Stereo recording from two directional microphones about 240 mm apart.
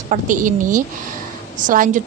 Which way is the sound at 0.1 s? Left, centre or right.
Right.